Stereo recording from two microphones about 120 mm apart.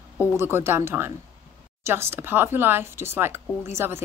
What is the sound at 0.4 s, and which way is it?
Speech, 20° right (ahead or behind).